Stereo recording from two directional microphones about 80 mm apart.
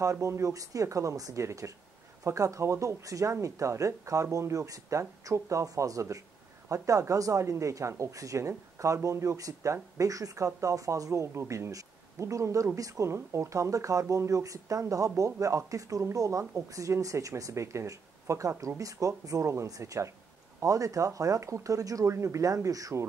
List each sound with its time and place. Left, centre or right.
0.0 s speech: right